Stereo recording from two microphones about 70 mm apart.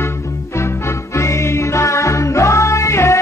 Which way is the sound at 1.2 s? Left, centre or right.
Left.